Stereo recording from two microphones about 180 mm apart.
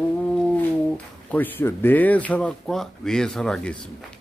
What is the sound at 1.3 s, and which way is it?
Speech, 10° left (ahead or behind).